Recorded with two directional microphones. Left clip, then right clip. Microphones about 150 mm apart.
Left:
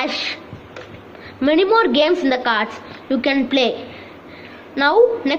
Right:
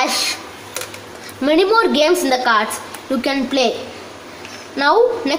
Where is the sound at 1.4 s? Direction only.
10° right (ahead or behind).